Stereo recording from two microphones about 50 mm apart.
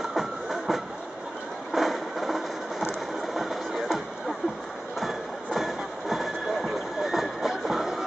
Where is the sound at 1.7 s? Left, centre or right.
Centre.